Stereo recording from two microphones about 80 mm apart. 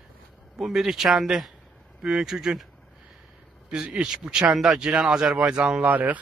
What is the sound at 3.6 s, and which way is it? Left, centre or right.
Speech, centre.